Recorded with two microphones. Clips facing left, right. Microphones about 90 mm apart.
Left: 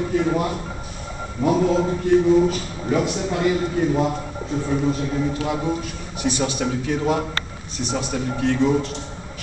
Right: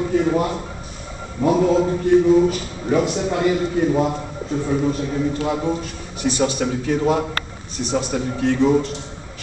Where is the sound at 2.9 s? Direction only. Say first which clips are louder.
Right 3 dB; 5° right (ahead or behind).